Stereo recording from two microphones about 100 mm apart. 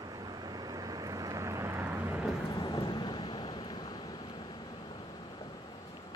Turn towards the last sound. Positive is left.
turn(degrees=45)  # may be behind; listen again after turning